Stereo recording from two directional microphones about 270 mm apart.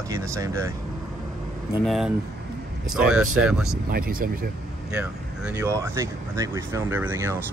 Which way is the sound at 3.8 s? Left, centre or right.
Right.